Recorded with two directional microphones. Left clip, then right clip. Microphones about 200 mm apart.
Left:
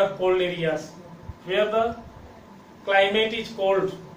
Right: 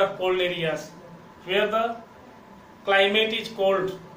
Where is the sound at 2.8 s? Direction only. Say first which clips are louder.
Even; 15° right (ahead or behind).